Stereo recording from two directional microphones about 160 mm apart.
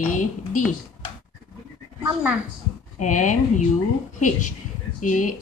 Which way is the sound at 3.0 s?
50° left (ahead or behind).